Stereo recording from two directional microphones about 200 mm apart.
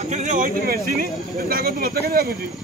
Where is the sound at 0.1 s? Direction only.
35° right (ahead or behind).